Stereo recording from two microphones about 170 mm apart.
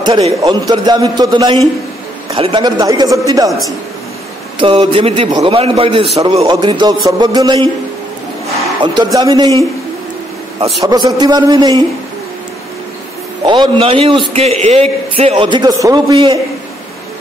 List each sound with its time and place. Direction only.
0.0 s a man's voice: 30° right (ahead or behind)
4.6 s a man's voice: 30° right (ahead or behind)
10.8 s a man's voice: 25° right (ahead or behind)
13.5 s a man's voice: 30° right (ahead or behind)